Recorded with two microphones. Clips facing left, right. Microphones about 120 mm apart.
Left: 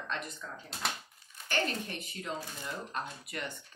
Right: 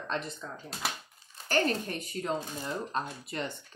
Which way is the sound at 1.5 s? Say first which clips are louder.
Right 5 dB; 40° right (ahead or behind).